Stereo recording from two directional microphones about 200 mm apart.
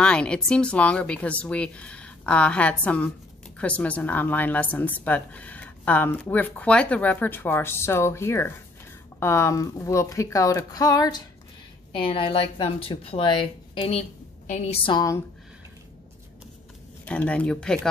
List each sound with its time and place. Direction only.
0.0 s a woman's voice: 5° left (ahead or behind)
17.0 s a woman's voice: 5° left (ahead or behind)